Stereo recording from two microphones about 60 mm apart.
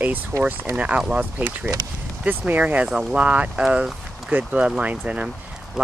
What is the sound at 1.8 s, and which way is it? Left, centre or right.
Speech, right.